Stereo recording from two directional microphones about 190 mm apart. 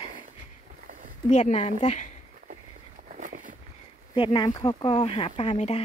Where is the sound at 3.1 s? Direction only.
45° right (ahead or behind).